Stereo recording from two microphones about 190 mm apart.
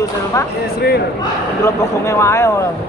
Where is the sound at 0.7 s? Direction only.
55° left (ahead or behind).